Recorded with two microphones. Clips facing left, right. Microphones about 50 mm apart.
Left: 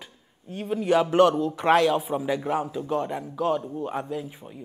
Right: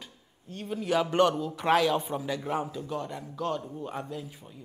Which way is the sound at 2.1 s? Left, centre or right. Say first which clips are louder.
Left 6 dB; centre.